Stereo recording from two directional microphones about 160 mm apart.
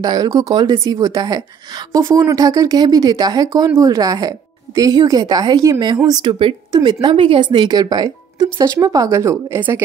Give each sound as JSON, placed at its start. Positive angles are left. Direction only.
{"t": 0.0, "sound": "speech", "side_deg": -25}